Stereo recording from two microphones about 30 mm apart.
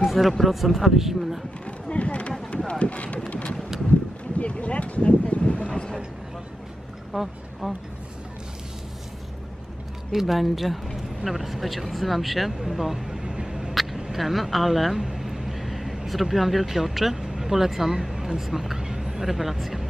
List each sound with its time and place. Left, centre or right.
0.0 s speech: centre
1.7 s a sound: left
2.7 s speech: left
3.3 s wind: left
4.4 s a sound: left
7.1 s speech: centre
10.2 s speech: centre
13.2 s a sound: right
14.1 s speech: centre
15.0 s vehicle: centre
16.1 s speech: centre